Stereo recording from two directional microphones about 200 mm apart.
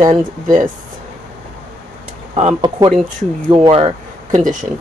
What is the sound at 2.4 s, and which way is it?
Speech, 35° right (ahead or behind).